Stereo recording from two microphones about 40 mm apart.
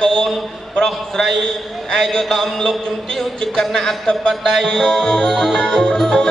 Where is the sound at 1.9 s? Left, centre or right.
Centre.